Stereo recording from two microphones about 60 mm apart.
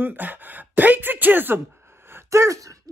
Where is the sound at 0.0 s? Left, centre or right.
Right.